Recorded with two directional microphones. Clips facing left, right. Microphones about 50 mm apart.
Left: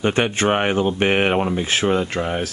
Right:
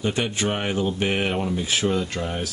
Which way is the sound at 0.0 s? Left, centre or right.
Left.